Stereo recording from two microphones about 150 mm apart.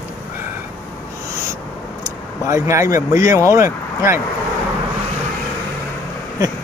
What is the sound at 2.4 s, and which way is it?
Speech, 20° right (ahead or behind).